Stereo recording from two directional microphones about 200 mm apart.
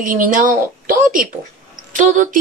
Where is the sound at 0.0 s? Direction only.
40° right (ahead or behind).